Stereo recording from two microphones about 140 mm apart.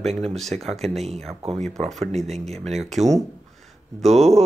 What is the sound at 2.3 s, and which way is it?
Speech, 50° right (ahead or behind).